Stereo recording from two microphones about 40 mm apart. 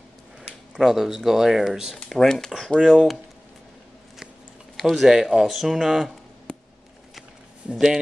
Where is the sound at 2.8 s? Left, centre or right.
Centre.